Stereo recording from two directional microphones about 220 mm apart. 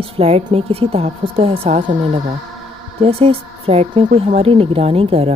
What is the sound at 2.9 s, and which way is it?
Speech, 25° right (ahead or behind).